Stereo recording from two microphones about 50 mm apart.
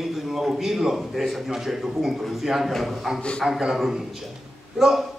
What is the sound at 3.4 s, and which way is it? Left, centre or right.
A man's voice, centre.